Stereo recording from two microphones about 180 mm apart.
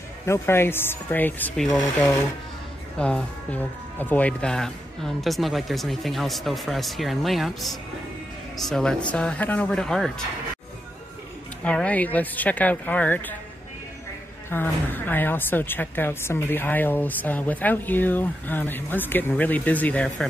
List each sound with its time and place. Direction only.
0.2 s a woman's voice: 15° left (ahead or behind)
11.6 s a woman's voice: 5° left (ahead or behind)
14.5 s a woman's voice: 10° left (ahead or behind)